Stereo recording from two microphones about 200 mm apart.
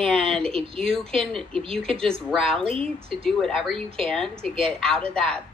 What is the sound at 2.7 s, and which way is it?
Speech, 30° right (ahead or behind).